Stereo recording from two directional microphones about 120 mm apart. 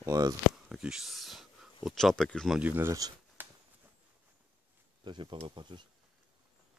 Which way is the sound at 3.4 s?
15° right (ahead or behind).